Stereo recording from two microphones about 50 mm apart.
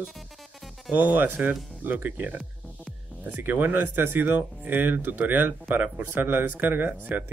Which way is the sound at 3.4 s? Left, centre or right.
Right.